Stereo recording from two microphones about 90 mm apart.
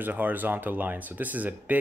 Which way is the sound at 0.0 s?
20° right (ahead or behind).